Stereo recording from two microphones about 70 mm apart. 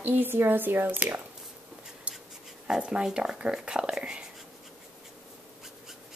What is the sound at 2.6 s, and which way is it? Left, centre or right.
Speech, centre.